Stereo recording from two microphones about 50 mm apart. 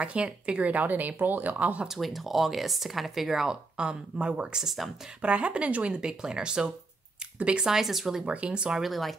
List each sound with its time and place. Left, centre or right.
0.0 s speech: right
1.9 s speech: centre
3.7 s speech: centre
4.6 s speech: centre
5.2 s speech: right
7.6 s speech: centre
8.3 s speech: right
8.8 s speech: centre